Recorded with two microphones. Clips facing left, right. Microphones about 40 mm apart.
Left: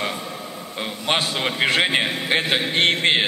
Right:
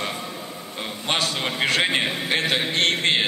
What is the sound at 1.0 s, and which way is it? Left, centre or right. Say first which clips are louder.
A man's voice: left 2 dB; centre.